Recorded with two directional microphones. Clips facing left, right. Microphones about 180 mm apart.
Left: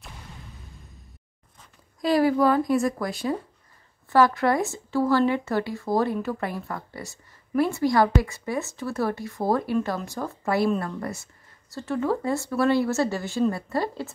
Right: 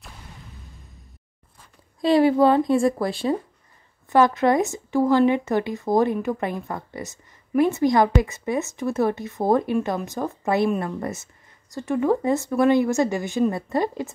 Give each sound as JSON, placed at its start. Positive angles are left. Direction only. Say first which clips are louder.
{"t": 2.0, "sound": "a woman's voice", "louder": "right 4 dB", "side_deg": -25}